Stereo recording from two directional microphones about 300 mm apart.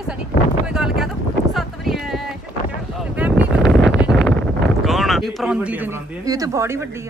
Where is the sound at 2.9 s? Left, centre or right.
Centre.